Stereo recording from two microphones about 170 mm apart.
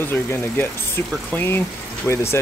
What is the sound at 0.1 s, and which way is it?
Speech, 10° left (ahead or behind).